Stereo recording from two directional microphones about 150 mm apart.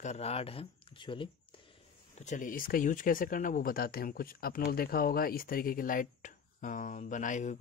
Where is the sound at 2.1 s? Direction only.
55° left (ahead or behind).